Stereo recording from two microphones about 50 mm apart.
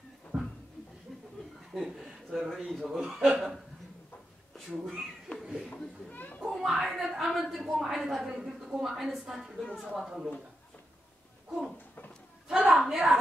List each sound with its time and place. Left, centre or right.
0.3 s a sound: centre
1.7 s a man's voice: centre
4.8 s a woman's voice: centre
5.4 s a sound: centre
5.7 s children playing: centre
6.4 s a woman's voice: centre
9.6 s a woman's voice: centre
9.9 s a woman's voice: centre
12.4 s a sound: centre
12.8 s a woman's voice: centre